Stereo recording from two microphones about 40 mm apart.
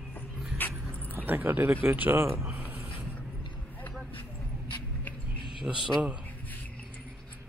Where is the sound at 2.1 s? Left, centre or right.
Right.